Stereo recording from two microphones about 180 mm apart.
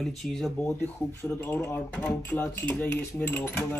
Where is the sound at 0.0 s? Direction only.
Centre (ahead or behind).